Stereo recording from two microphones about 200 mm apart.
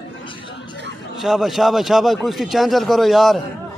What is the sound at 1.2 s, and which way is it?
Speech, centre (ahead or behind).